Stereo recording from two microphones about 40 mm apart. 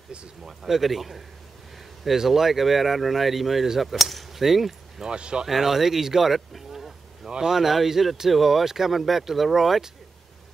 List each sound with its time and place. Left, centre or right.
0.5 s speech: centre
5.0 s speech: right
5.5 s speech: centre